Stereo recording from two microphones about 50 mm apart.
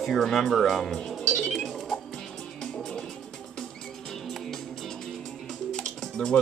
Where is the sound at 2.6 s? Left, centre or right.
Centre.